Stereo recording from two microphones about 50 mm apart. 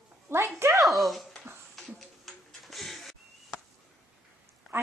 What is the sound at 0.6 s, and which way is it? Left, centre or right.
Speech, right.